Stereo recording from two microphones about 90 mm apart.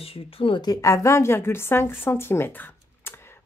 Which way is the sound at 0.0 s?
90° left.